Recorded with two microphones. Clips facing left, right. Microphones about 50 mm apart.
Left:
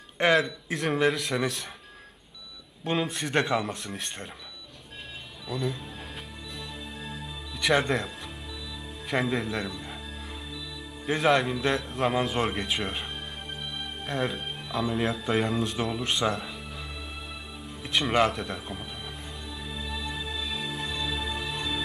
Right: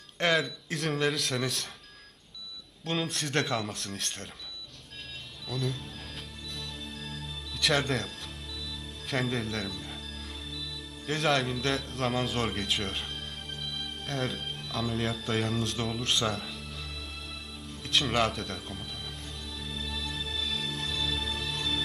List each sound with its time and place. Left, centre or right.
0.4 s speech: centre
2.8 s speech: centre
5.5 s speech: centre
6.5 s music: centre
9.1 s speech: centre
11.1 s a man's voice: centre
17.6 s music: centre